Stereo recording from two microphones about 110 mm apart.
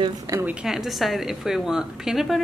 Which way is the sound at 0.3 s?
25° right (ahead or behind).